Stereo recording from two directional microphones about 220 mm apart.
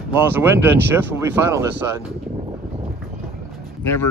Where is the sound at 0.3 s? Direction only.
10° right (ahead or behind).